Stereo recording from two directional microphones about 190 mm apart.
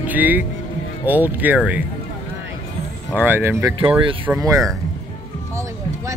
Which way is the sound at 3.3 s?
10° right (ahead or behind).